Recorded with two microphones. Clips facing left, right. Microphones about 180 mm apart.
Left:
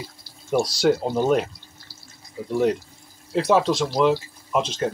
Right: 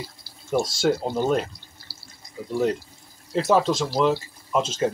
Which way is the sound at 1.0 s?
10° left (ahead or behind).